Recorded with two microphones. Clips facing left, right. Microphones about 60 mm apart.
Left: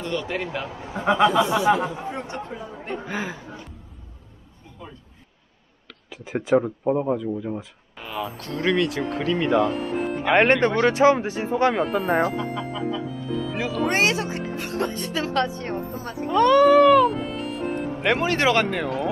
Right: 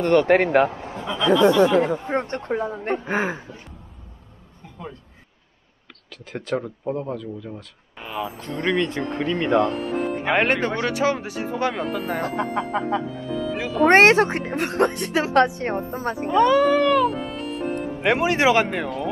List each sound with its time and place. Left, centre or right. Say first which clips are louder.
0.0 s a man's voice: right 11 dB; right
0.9 s speech: left 3 dB; left
1.4 s a man's voice: right 4 dB; right
3.1 s speech: right 6 dB; right
6.0 s speech: left 5 dB; centre
8.0 s speech: right 1 dB; centre
11.0 s speech: left 5 dB; centre
12.4 s a man's voice: right 4 dB; right
13.1 s music: right 1 dB; centre
13.8 s speech: right 10 dB; right
16.3 s music: left 2 dB; centre
18.1 s speech: right 2 dB; centre